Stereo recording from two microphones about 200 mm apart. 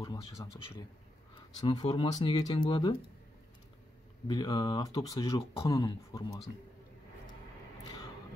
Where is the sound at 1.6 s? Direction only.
25° left (ahead or behind).